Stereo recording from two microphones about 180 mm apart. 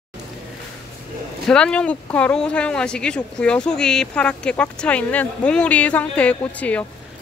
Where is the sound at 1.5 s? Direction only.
5° left (ahead or behind).